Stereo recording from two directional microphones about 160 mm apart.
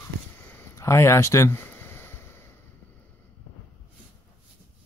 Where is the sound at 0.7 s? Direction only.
15° left (ahead or behind).